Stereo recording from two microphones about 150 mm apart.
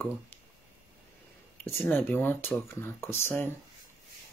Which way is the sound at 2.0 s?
15° left (ahead or behind).